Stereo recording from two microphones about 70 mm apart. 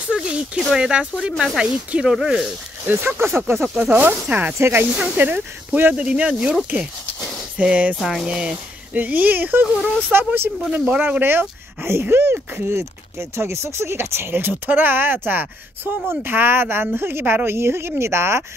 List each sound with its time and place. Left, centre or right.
0.1 s a sound: centre
0.7 s speech: centre
2.8 s speech: right
3.6 s speech: centre
3.9 s speech: right
4.6 s speech: right
4.9 s speech: right
5.9 s speech: centre
7.5 s speech: centre
7.9 s speech: centre
8.3 s speech: centre; by 18.4 s right